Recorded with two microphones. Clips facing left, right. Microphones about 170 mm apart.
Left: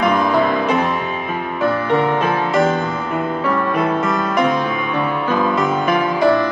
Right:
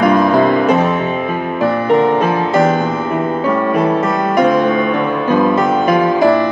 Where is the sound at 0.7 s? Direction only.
40° right (ahead or behind).